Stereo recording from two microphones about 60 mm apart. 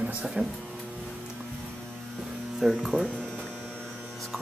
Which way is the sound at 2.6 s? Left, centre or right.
Centre.